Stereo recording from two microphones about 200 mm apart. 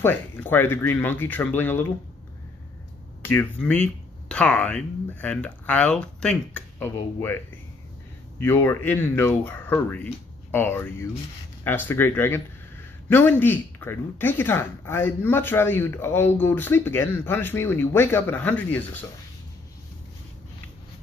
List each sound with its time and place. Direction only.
0.0 s speech: 10° left (ahead or behind)
3.3 s speech: 10° left (ahead or behind)
8.4 s speech: 10° left (ahead or behind)